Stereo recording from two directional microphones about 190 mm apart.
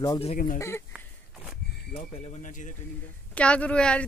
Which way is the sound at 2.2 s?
40° left (ahead or behind).